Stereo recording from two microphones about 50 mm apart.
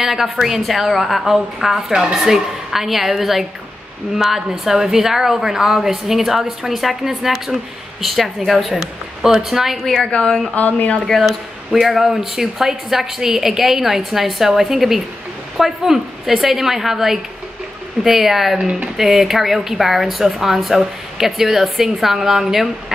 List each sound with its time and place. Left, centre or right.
0.0 s speech: centre
1.9 s a woman's voice: centre
10.1 s speech: centre
10.5 s speech: left
11.2 s a woman's voice: centre